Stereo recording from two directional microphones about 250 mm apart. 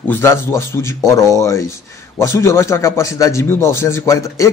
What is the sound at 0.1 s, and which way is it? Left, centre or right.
A man's voice, centre.